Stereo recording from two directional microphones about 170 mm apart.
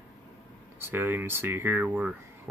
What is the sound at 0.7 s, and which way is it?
Speech, 15° right (ahead or behind).